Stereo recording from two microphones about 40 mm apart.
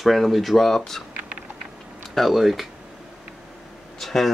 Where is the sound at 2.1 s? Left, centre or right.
Centre.